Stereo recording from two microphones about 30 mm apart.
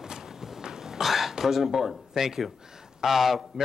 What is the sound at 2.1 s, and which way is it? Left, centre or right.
A man's voice, centre.